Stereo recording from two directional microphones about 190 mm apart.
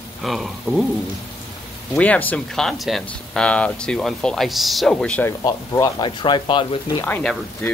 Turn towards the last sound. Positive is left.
turn(degrees=5)  # may be behind; listen again after turning